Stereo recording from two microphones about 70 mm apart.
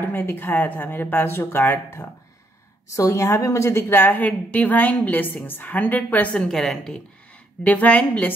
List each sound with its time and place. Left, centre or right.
0.1 s speech: left
2.9 s a woman's voice: left
3.9 s a woman's voice: left
6.3 s a woman's voice: centre
7.6 s a woman's voice: left